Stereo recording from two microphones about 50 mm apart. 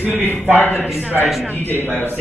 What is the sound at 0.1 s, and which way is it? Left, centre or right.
A man's voice, left.